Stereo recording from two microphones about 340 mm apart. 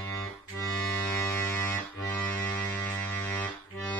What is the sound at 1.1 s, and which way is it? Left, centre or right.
Music, centre.